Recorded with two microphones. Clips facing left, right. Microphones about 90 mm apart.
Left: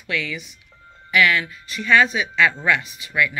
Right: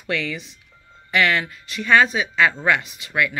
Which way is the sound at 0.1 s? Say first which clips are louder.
Right 1 dB; 35° right (ahead or behind).